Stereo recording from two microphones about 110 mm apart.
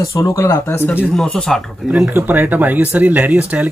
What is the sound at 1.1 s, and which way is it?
Speech, 5° left (ahead or behind).